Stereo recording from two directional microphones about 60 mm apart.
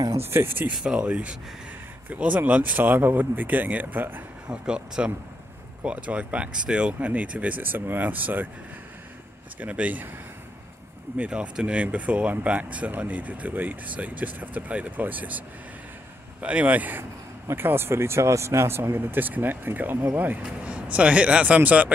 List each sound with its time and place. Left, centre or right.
0.1 s speech: right
0.8 s speech: right
4.5 s speech: centre
9.6 s speech: right
11.1 s speech: centre
17.5 s speech: right
20.6 s speech: right